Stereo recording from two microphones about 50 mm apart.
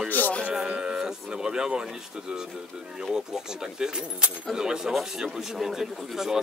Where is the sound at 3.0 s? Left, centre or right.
Centre.